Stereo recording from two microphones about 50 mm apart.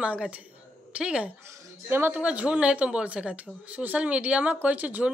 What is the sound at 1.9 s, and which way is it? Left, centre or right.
Female singing, right.